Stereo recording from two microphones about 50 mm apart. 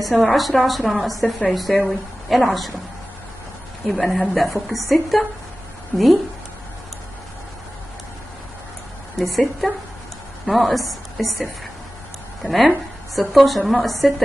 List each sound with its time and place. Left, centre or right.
0.1 s a woman's voice: centre
3.8 s a woman's voice: centre
5.9 s speech: left
9.2 s a woman's voice: centre
12.4 s a woman's voice: centre